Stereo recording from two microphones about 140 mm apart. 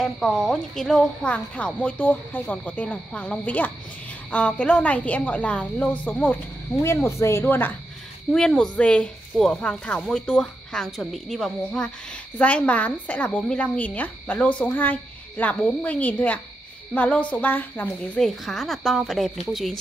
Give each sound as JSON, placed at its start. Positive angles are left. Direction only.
{"t": 0.0, "sound": "a woman's voice", "side_deg": 0}
{"t": 18.2, "sound": "speech", "side_deg": 0}